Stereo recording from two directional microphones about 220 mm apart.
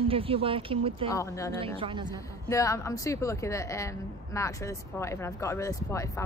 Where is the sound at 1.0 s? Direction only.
15° left (ahead or behind).